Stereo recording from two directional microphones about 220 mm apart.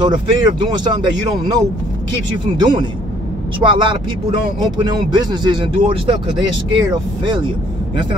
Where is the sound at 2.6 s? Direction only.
20° right (ahead or behind).